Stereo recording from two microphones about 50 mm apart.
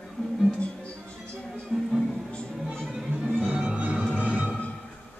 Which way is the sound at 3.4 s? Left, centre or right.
Centre.